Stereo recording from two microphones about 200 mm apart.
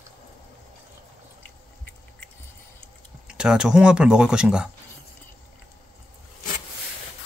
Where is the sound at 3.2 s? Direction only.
5° right (ahead or behind).